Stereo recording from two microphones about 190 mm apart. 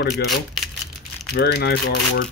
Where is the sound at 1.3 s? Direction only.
65° left (ahead or behind).